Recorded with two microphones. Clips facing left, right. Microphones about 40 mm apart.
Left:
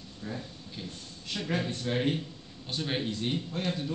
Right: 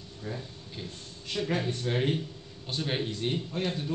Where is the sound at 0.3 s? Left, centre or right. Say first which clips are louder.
Right 1 dB; centre.